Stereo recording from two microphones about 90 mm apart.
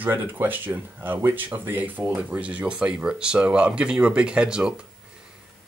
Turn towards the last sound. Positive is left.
turn(degrees=-10)  # may be behind; listen again after turning